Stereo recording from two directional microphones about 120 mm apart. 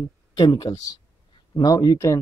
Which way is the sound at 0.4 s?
35° left (ahead or behind).